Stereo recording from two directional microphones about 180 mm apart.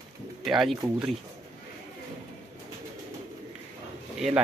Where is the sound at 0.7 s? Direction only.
20° right (ahead or behind).